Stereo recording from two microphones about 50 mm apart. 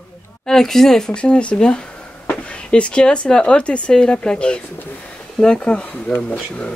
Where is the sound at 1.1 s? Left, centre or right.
Left.